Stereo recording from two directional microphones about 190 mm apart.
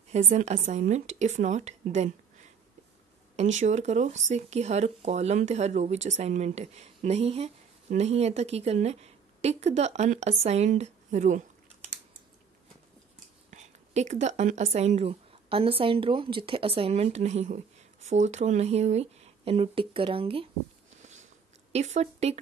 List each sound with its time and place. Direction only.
0.1 s speech: 35° right (ahead or behind)
3.5 s speech: 35° right (ahead or behind)
13.5 s speech: 40° right (ahead or behind)
21.0 s biting: 40° right (ahead or behind)
21.7 s speech: 35° right (ahead or behind)